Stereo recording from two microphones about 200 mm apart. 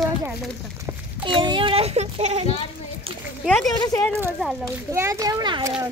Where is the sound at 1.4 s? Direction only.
25° right (ahead or behind).